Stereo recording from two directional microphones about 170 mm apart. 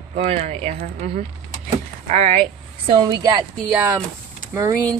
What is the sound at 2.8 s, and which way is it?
Speech, 25° right (ahead or behind).